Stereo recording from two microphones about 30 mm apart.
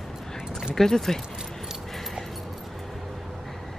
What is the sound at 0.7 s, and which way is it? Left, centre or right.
Speech, centre.